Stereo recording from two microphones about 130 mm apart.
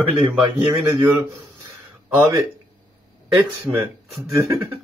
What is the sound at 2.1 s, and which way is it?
Speech, 15° right (ahead or behind).